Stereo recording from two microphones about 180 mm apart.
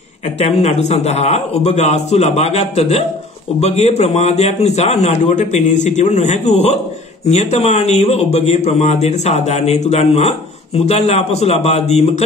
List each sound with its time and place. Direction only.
0.4 s a man's voice: 35° left (ahead or behind)